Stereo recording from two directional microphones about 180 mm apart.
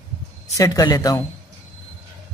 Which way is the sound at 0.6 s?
20° left (ahead or behind).